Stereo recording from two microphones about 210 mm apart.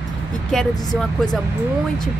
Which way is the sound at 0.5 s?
Centre (ahead or behind).